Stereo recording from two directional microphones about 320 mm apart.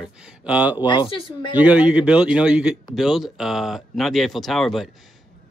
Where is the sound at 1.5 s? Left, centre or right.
Centre.